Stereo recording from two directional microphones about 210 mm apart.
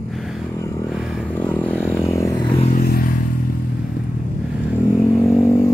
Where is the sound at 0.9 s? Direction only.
Centre (ahead or behind); by 2.6 s 20° left (ahead or behind).